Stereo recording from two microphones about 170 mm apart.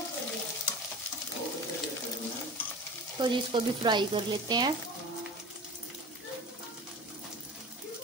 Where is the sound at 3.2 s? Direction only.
30° right (ahead or behind).